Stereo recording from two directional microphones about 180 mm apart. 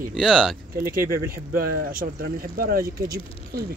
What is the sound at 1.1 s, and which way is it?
Speech, 55° right (ahead or behind).